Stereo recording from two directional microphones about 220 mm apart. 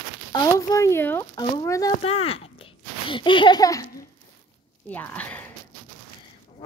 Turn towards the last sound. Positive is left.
turn(degrees=5)  # may be behind; listen again after turning